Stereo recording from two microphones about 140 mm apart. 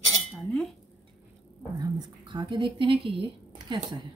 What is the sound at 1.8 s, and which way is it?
Speech, 30° right (ahead or behind).